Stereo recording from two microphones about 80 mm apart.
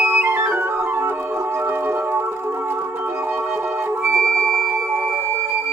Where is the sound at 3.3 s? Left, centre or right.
Right.